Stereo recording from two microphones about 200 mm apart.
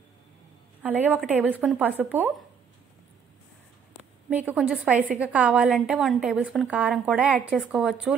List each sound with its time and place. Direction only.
0.8 s a woman's voice: 10° right (ahead or behind)
4.3 s a woman's voice: 10° right (ahead or behind)